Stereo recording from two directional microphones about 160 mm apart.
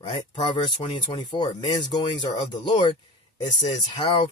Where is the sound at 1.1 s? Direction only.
25° left (ahead or behind).